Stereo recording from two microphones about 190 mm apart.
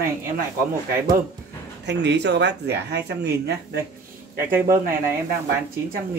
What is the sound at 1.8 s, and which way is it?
Speech, 65° right (ahead or behind).